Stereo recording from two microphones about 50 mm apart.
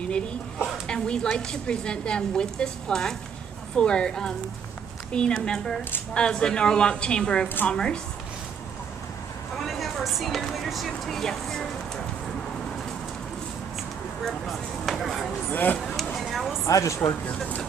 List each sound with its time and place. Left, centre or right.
0.7 s a woman's voice: centre
9.7 s speech: centre
14.2 s a sound: centre
15.5 s speech: left
16.0 s a sound: centre
16.6 s speech: left